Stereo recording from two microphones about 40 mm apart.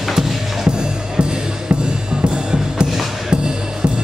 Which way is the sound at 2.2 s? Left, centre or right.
Right.